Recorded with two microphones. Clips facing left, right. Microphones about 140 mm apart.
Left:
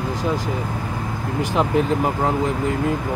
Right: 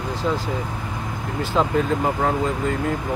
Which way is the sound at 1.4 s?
20° left (ahead or behind).